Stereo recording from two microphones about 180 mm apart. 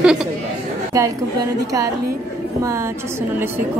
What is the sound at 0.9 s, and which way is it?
Speech, 15° right (ahead or behind).